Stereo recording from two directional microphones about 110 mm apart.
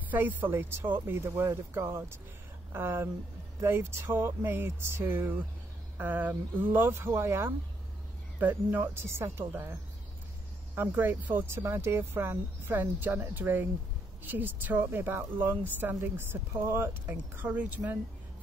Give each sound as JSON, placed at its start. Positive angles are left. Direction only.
{"t": 0.1, "sound": "speech", "side_deg": -15}